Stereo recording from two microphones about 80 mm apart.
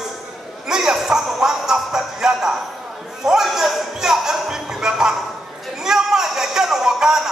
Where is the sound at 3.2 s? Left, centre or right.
Centre.